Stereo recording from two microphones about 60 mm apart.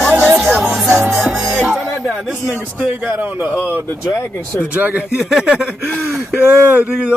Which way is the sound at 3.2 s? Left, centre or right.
Right.